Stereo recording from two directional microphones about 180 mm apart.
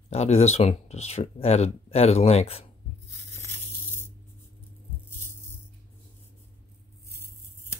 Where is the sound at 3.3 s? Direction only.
10° left (ahead or behind).